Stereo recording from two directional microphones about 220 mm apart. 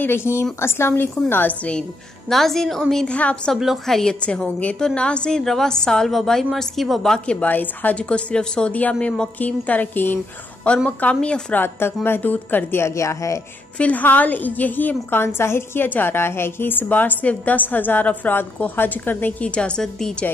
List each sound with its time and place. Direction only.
0.0 s a woman's voice: 10° left (ahead or behind)